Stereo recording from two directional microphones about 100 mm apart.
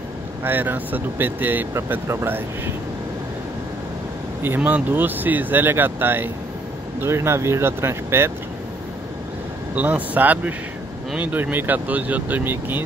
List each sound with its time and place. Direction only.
0.4 s speech: 20° right (ahead or behind)
4.4 s speech: 20° right (ahead or behind)
9.8 s speech: 15° right (ahead or behind)